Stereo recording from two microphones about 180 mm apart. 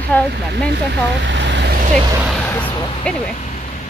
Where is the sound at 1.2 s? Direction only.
80° right.